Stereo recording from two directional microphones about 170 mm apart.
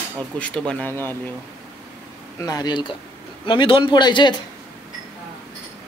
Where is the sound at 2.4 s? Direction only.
20° left (ahead or behind).